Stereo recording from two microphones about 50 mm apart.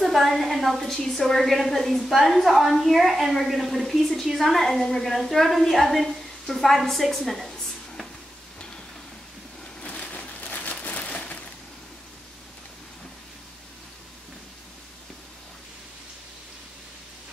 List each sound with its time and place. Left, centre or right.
0.0 s a woman's voice: centre
9.8 s crushing: left